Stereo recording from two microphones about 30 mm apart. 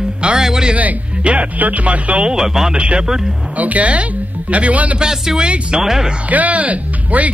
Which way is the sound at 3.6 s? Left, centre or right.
Right.